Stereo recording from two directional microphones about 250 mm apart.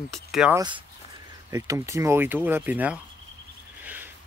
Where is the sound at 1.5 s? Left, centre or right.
Centre.